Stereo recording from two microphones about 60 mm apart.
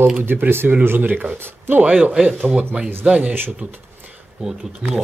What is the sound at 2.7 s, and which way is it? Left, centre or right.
Speech, right.